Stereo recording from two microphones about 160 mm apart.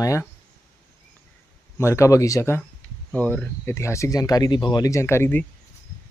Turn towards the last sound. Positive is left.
turn(degrees=15)  # may be behind; listen again after turning